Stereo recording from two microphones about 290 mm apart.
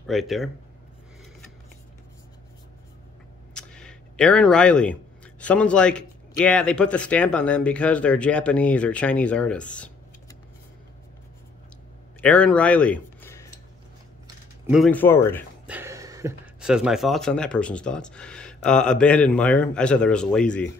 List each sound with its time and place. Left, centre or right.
0.0 s speech: centre
3.5 s speech: centre
12.2 s speech: centre
14.7 s speech: centre
15.6 s speech: centre